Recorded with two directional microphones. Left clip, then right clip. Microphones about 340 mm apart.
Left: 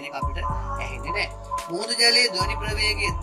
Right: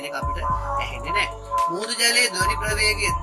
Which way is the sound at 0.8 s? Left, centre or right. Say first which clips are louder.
Right 4 dB; centre.